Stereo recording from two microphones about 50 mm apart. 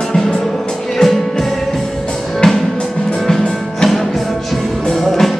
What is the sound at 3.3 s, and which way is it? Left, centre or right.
Music, centre.